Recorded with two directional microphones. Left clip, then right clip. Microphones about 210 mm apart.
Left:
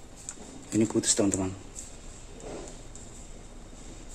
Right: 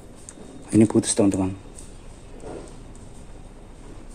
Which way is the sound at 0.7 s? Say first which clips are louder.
Right 7 dB; 35° right (ahead or behind).